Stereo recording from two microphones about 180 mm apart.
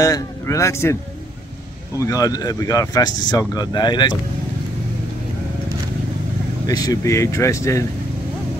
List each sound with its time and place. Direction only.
0.0 s speech: 20° left (ahead or behind)
2.0 s speech: 20° left (ahead or behind)
6.6 s speech: 20° left (ahead or behind)